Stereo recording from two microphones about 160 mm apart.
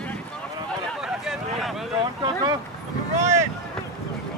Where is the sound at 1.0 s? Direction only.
Centre (ahead or behind).